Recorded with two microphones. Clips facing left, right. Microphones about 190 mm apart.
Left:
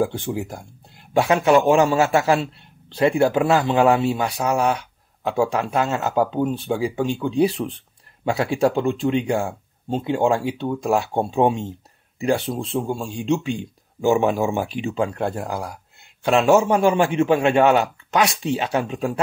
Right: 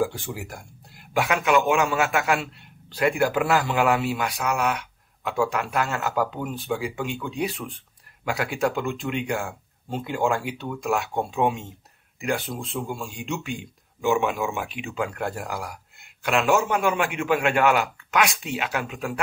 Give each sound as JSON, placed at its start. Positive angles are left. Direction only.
{"t": 0.0, "sound": "a man's voice", "side_deg": 25}